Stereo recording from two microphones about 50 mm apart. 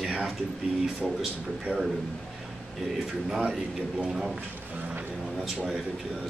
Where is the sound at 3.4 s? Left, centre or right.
Centre.